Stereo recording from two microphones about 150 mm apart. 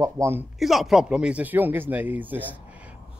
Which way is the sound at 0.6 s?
Centre (ahead or behind).